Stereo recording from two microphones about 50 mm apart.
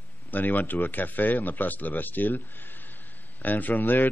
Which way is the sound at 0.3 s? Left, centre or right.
Left.